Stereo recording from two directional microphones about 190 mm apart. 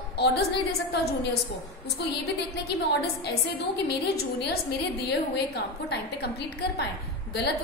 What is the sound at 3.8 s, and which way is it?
A woman's voice, 55° left (ahead or behind).